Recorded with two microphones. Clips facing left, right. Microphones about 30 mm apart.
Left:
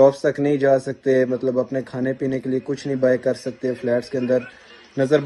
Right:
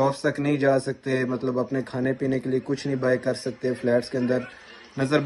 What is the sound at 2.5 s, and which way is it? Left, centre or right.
Speech, right.